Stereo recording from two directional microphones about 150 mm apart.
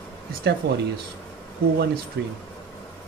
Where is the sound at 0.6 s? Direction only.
90° right.